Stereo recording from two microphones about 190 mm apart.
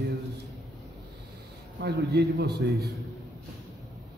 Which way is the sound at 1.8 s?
60° right (ahead or behind).